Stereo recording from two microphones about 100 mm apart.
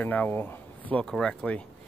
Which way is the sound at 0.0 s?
15° left (ahead or behind).